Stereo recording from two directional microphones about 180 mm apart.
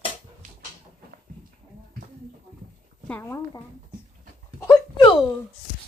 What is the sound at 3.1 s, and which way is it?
Speech, 15° left (ahead or behind).